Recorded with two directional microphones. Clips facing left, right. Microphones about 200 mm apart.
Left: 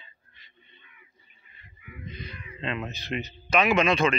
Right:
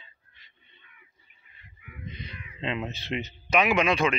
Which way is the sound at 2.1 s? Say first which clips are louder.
Left 2 dB; 20° right (ahead or behind).